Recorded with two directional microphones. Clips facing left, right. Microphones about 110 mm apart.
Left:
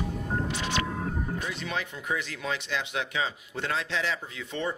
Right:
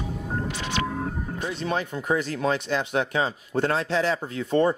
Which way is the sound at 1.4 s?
35° right (ahead or behind).